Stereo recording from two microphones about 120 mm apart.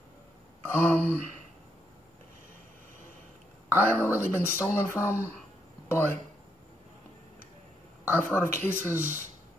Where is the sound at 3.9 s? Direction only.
20° left (ahead or behind).